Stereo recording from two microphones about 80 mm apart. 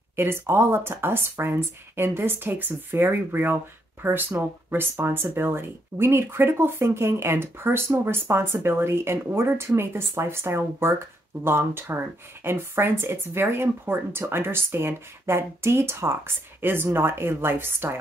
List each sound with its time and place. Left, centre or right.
0.1 s speech: right